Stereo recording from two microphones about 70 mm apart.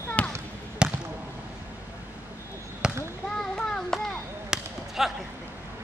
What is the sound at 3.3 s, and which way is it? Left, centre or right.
Children playing, centre.